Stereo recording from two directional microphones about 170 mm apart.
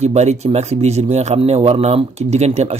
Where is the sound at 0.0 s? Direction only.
40° right (ahead or behind).